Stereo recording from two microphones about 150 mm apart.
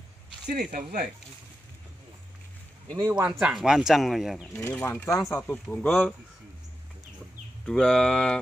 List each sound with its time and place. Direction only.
0.5 s speech: 70° right (ahead or behind)
3.2 s speech: 5° right (ahead or behind)
4.6 s speech: 10° left (ahead or behind)
7.6 s speech: centre (ahead or behind)